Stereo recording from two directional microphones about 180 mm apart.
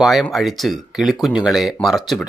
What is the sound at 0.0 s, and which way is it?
Speech, centre (ahead or behind).